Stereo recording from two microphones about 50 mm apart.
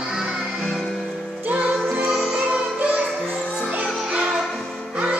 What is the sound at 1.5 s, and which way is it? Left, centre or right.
Music, centre.